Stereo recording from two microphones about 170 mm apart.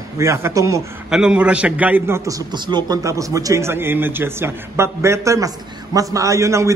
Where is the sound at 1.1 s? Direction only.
5° right (ahead or behind).